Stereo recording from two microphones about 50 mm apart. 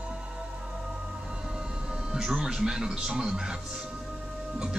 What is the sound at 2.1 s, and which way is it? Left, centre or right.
Speech, centre.